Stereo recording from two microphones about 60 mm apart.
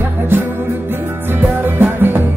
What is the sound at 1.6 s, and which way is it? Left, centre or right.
Music, right.